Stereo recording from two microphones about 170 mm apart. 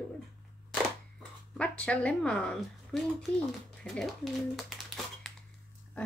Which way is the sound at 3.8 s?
Centre (ahead or behind).